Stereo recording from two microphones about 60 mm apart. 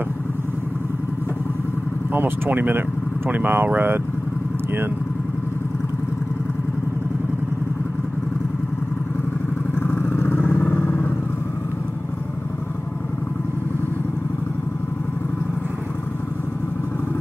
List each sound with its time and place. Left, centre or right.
2.1 s speech: right
9.8 s vehicle: left